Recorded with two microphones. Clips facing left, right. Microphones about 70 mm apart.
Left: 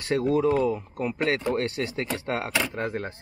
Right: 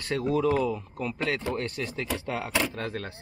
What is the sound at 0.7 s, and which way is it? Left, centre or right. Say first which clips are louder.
A man's voice: left 4 dB; centre.